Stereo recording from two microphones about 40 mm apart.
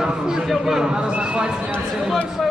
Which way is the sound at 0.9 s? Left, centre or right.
Right.